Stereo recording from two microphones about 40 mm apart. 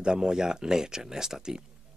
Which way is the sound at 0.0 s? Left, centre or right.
Centre.